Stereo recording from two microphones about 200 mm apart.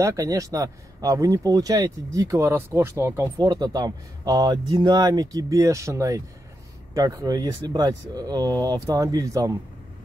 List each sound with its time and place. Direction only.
0.0 s speech: 15° right (ahead or behind)